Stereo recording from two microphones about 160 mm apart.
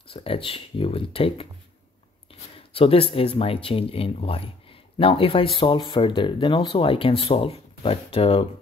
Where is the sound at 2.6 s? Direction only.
35° left (ahead or behind).